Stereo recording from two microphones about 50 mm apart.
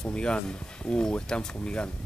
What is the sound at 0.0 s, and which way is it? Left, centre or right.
Speech, centre.